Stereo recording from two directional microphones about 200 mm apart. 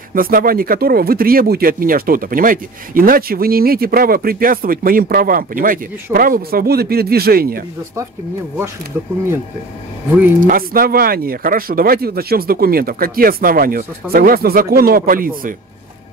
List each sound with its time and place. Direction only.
0.1 s speech: 45° right (ahead or behind)
10.4 s speech: 45° right (ahead or behind)